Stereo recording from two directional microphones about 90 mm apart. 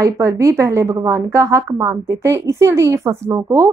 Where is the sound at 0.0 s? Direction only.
35° right (ahead or behind).